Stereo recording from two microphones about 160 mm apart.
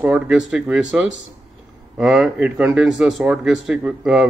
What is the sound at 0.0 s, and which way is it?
Speech, 5° right (ahead or behind).